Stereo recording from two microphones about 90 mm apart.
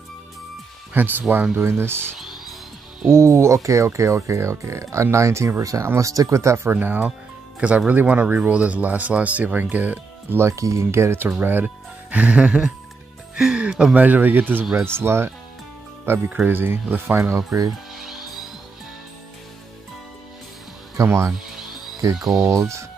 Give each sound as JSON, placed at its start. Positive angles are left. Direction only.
{"t": 0.9, "sound": "speech", "side_deg": -20}
{"t": 3.1, "sound": "speech", "side_deg": -30}
{"t": 6.7, "sound": "speech", "side_deg": -20}
{"t": 10.4, "sound": "speech", "side_deg": -35}
{"t": 17.5, "sound": "speech", "side_deg": -40}
{"t": 21.0, "sound": "speech", "side_deg": -35}
{"t": 21.3, "sound": "music", "side_deg": -5}
{"t": 22.5, "sound": "speech", "side_deg": -35}